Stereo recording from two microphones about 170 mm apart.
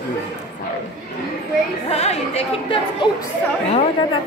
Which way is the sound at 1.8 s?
40° left (ahead or behind).